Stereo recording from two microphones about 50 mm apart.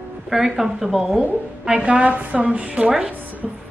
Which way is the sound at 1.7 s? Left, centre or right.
Right.